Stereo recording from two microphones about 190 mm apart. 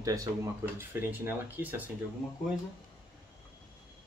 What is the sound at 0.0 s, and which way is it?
Speech, 20° right (ahead or behind).